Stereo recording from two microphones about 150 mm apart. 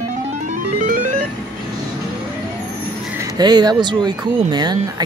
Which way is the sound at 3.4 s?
30° right (ahead or behind).